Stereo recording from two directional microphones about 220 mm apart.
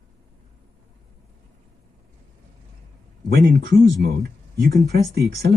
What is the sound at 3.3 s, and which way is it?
Speech, 50° right (ahead or behind).